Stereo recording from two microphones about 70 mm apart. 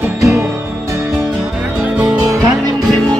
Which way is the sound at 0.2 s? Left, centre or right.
Right.